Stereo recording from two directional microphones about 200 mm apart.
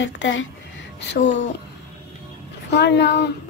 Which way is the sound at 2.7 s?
60° left (ahead or behind).